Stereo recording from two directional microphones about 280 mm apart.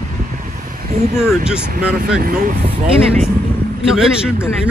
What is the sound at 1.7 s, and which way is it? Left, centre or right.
Speech, right.